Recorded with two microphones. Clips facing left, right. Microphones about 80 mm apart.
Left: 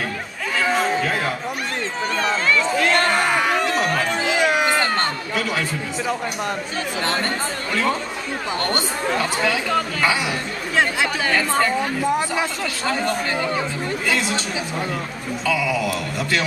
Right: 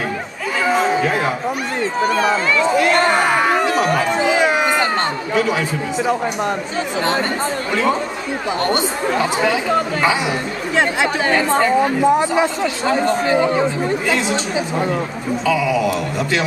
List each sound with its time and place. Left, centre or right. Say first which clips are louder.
0.7 s a sound: right 5 dB; centre
2.0 s speech: right 6 dB; centre
3.6 s a sound: right 4 dB; centre
5.3 s a man's voice: right 6 dB; centre
7.7 s speech: right 3 dB; centre
11.2 s speech: right 4 dB; right
11.5 s speech: right 5 dB; centre
15.4 s speech: right 4 dB; centre